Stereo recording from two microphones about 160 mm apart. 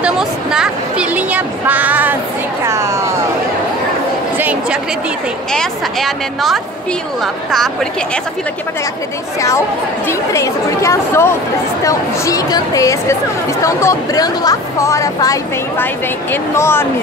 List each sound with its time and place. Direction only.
0.0 s speech: 5° right (ahead or behind)
2.6 s a sound: 15° right (ahead or behind)
4.4 s a woman's voice: 10° right (ahead or behind)
5.5 s a woman's voice: centre (ahead or behind)
10.0 s speech: 20° left (ahead or behind)